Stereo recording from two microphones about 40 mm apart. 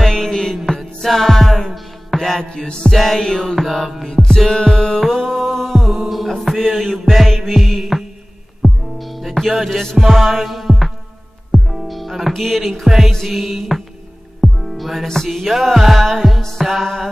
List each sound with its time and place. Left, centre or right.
0.0 s music: centre
2.5 s music: centre
2.9 s music: centre
4.1 s music: centre
9.9 s music: centre